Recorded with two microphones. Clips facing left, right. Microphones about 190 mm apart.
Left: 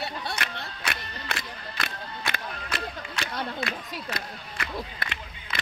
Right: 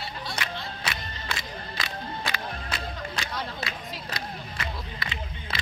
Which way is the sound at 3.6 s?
55° left (ahead or behind).